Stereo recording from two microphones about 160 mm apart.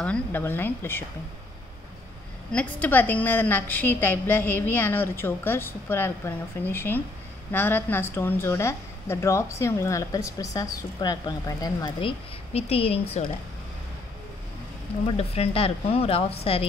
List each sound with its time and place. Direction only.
0.0 s a woman's voice: 10° left (ahead or behind)
2.5 s a woman's voice: 10° left (ahead or behind); by 13.3 s 35° left (ahead or behind)
15.0 s speech: 40° left (ahead or behind)